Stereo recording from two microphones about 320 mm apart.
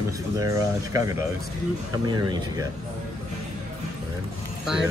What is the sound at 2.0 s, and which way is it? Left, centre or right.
Speech, centre.